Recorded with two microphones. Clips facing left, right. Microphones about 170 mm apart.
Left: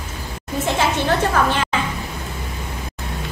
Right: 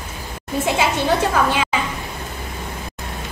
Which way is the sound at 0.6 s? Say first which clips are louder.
Even; 10° right (ahead or behind).